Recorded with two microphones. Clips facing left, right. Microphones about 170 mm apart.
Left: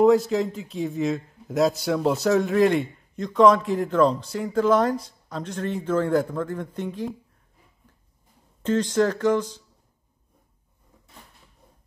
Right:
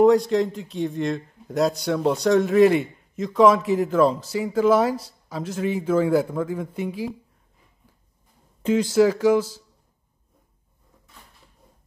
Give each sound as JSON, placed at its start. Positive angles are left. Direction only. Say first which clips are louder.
{"t": 0.0, "sound": "a man's voice", "louder": "right 1 dB", "side_deg": 0}
{"t": 8.6, "sound": "speech", "louder": "right 3 dB", "side_deg": -10}